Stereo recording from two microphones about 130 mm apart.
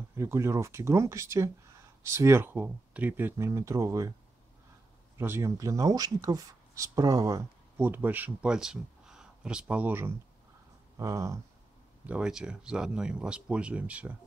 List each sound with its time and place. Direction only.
0.1 s speech: 20° right (ahead or behind)
5.1 s speech: 15° right (ahead or behind)
7.8 s speech: 15° right (ahead or behind)
12.1 s speech: 5° right (ahead or behind)